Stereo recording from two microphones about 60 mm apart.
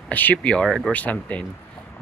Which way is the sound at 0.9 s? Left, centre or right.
Left.